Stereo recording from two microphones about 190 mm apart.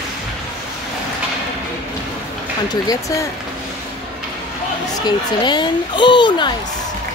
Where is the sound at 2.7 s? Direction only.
20° left (ahead or behind).